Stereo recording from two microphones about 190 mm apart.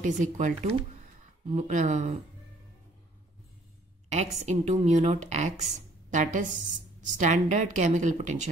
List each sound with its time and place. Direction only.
0.0 s a woman's voice: 40° right (ahead or behind)
4.1 s a woman's voice: 35° right (ahead or behind)